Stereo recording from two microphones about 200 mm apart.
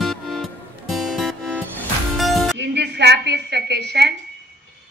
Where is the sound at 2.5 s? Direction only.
60° right (ahead or behind).